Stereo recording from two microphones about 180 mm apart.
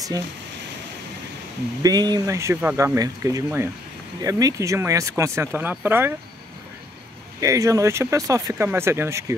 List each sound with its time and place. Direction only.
1.8 s speech: 20° right (ahead or behind)
7.3 s speech: 20° right (ahead or behind)